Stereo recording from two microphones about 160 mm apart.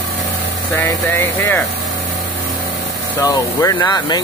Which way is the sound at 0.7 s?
10° left (ahead or behind).